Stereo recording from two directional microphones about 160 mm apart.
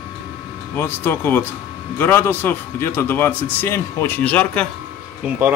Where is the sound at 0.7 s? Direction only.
15° left (ahead or behind).